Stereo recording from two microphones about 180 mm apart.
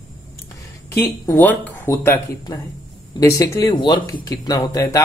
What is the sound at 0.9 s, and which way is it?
Speech, 10° left (ahead or behind).